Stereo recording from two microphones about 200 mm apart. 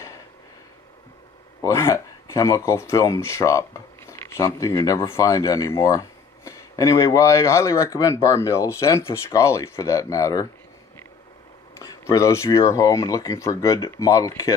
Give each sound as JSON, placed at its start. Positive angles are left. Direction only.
{"t": 1.6, "sound": "speech", "side_deg": 15}
{"t": 11.8, "sound": "speech", "side_deg": 15}